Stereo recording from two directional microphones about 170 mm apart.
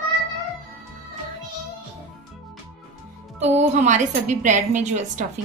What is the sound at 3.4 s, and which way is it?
A woman's voice, 45° right (ahead or behind).